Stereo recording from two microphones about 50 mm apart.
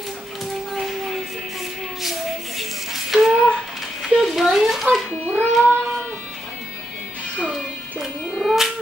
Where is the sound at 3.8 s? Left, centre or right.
Centre.